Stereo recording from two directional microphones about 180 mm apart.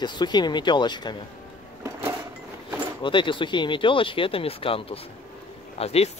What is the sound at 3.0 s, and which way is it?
Speech, 25° left (ahead or behind).